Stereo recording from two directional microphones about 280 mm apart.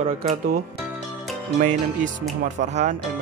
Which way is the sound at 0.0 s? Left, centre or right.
Right.